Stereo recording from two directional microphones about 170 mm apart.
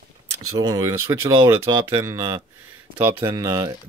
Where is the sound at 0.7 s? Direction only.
20° right (ahead or behind).